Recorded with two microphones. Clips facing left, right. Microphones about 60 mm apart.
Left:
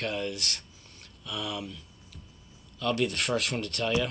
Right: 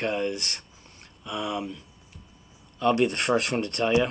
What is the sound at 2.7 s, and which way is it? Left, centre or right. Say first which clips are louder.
Speech: right 6 dB; right.